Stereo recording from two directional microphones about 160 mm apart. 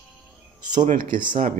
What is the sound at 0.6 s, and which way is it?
Speech, 50° right (ahead or behind).